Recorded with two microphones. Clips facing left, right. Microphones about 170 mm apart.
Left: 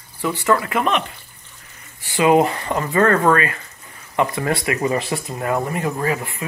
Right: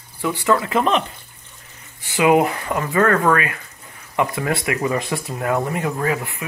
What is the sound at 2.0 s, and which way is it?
Speech, 10° right (ahead or behind).